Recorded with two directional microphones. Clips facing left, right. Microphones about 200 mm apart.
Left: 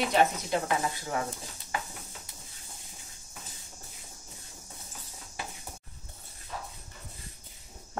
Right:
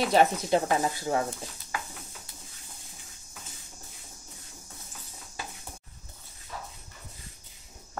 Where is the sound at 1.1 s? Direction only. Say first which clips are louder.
Right 6 dB; 30° right (ahead or behind).